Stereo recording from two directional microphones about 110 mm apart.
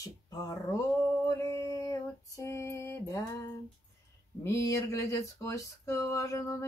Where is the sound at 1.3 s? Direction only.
25° left (ahead or behind).